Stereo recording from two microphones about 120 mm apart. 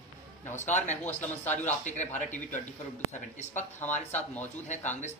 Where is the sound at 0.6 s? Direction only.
80° left.